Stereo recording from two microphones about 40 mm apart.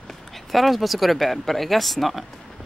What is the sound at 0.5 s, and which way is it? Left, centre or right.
Speech, centre.